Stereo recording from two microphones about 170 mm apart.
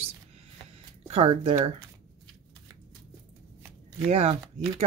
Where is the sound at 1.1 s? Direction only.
35° right (ahead or behind).